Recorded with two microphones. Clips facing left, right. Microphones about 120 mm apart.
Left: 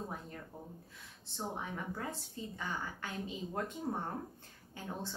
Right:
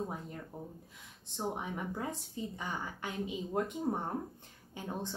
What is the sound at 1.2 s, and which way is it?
A woman's voice, 20° right (ahead or behind).